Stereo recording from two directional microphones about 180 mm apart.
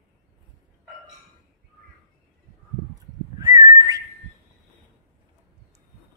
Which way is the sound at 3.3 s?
20° right (ahead or behind).